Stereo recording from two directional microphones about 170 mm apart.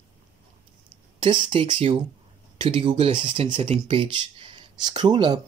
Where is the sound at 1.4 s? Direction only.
35° right (ahead or behind).